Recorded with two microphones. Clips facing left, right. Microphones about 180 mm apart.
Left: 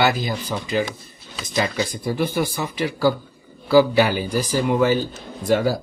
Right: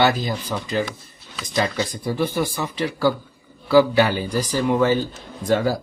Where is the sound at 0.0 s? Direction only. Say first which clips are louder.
Right 1 dB; 5° left (ahead or behind).